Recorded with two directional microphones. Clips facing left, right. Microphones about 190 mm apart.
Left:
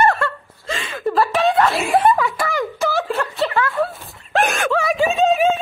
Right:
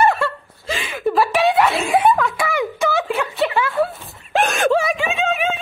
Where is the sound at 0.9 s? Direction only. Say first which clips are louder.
Right 1 dB; 5° right (ahead or behind).